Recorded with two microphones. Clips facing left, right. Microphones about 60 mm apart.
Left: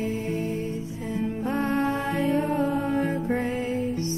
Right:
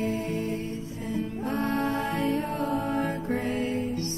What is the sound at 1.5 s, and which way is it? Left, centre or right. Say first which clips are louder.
Music: left 2 dB; left.